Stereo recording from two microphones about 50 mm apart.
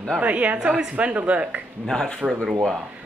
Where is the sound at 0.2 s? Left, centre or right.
Right.